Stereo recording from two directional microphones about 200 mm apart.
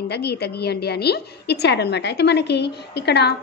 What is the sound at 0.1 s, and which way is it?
A woman's voice, 55° left (ahead or behind).